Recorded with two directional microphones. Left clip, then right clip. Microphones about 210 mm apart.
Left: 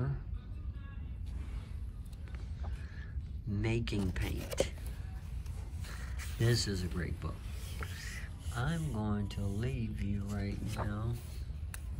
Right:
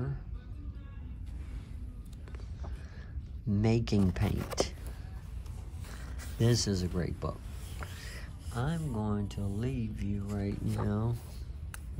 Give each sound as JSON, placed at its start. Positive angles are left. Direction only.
{"t": 3.5, "sound": "speech", "side_deg": -20}
{"t": 6.4, "sound": "speech", "side_deg": -15}